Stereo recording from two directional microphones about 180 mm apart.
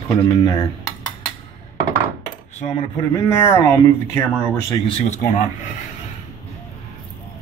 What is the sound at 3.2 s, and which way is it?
Speech, 15° left (ahead or behind).